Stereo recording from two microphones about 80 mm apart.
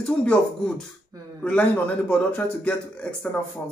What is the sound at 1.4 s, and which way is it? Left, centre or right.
A man's voice, centre.